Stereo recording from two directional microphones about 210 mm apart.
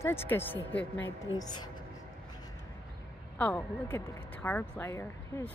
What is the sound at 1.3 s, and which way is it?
Speech, 20° left (ahead or behind).